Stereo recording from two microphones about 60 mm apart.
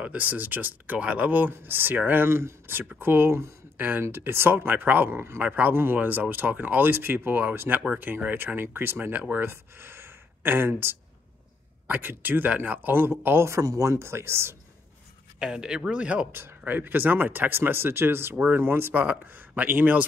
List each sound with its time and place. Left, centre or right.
0.0 s speech: right
3.7 s speech: right
4.0 s speech: right
9.5 s speech: right
13.5 s speech: right
15.3 s speech: centre
16.3 s speech: right
18.3 s speech: right
18.6 s speech: right